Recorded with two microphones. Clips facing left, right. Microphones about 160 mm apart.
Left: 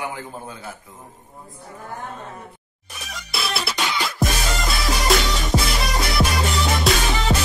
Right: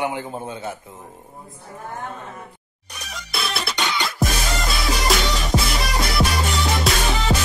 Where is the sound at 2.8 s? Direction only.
Centre (ahead or behind).